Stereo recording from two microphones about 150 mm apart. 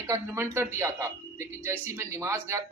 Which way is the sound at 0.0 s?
15° right (ahead or behind).